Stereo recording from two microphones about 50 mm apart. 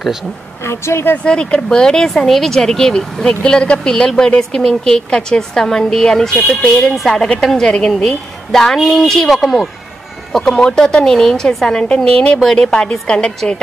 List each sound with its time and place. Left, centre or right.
0.7 s a woman's voice: left
1.1 s speech: left
6.6 s speech: left
7.0 s speech: centre